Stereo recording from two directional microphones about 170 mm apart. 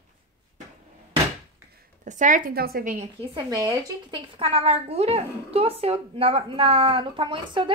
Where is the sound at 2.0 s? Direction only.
50° right (ahead or behind).